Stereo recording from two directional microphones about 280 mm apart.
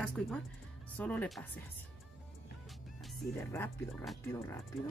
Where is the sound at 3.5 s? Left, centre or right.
Centre.